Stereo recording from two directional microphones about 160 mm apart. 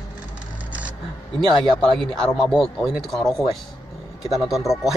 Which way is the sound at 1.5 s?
5° left (ahead or behind).